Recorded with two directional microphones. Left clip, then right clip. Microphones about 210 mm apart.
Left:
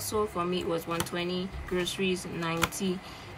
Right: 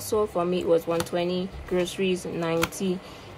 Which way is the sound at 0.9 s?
5° left (ahead or behind).